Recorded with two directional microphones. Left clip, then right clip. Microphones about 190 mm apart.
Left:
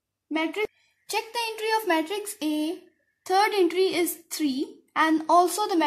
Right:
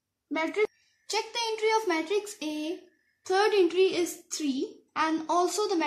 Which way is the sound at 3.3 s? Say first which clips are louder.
Left 2 dB; 45° left (ahead or behind).